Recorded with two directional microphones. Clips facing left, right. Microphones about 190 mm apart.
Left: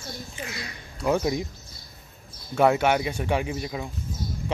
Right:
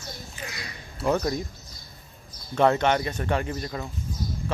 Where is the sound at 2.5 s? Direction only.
10° left (ahead or behind).